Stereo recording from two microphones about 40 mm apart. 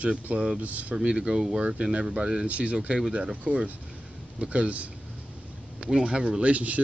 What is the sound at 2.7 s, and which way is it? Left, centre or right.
Speech, right.